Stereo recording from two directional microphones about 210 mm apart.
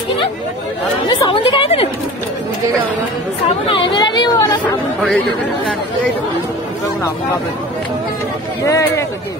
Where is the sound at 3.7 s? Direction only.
25° left (ahead or behind).